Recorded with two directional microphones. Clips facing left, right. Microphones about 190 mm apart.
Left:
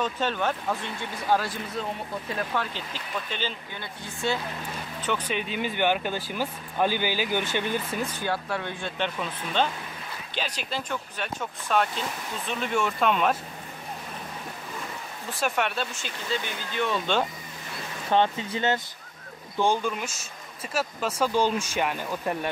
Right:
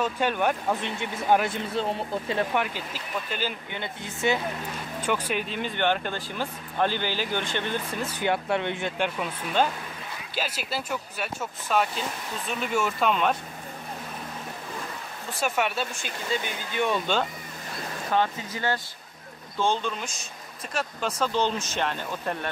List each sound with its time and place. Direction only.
0.0 s speech: 15° right (ahead or behind)
3.7 s speech: 20° right (ahead or behind)
5.0 s speech: 10° right (ahead or behind); by 7.8 s 10° left (ahead or behind)
8.2 s speech: 20° right (ahead or behind)
8.9 s speech: 10° right (ahead or behind)
15.3 s speech: centre (ahead or behind)
18.1 s speech: 25° left (ahead or behind)
19.6 s speech: 10° left (ahead or behind)